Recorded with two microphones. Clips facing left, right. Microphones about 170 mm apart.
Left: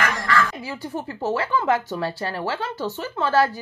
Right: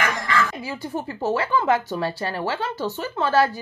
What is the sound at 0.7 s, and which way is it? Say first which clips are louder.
Speech: right 1 dB; 15° right (ahead or behind).